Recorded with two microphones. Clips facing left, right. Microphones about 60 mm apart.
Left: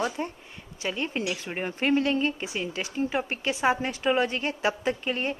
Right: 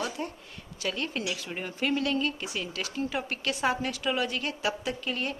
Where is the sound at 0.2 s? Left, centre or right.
Left.